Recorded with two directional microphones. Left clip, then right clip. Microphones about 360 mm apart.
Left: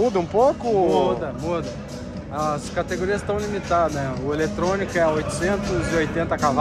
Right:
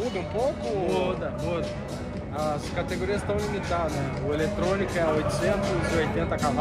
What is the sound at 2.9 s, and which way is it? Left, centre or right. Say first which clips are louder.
Speech: left 4 dB; left.